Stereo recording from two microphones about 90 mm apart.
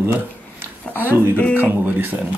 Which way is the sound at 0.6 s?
25° right (ahead or behind).